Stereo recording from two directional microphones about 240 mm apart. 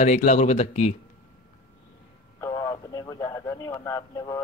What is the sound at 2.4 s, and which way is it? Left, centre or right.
Speech, centre.